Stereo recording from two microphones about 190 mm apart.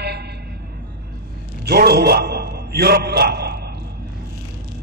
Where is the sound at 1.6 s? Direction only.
55° right (ahead or behind).